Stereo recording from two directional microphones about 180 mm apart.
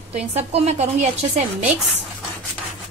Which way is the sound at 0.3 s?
35° right (ahead or behind).